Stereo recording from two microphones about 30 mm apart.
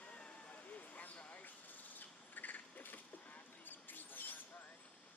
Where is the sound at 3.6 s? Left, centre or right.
Left.